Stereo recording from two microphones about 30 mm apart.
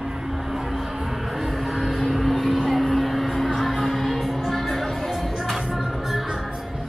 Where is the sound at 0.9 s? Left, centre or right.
Centre.